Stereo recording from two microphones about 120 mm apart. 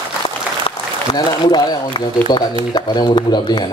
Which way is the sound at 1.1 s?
40° left (ahead or behind).